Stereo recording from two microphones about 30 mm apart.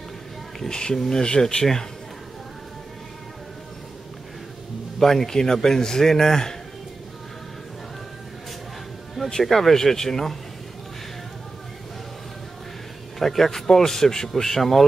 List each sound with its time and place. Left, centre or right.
0.6 s speech: left
0.9 s speech: centre
1.2 s speech: left
4.9 s a man's voice: centre
9.4 s speech: centre
13.2 s speech: centre